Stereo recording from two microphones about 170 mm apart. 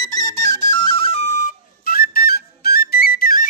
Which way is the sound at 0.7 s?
30° left (ahead or behind).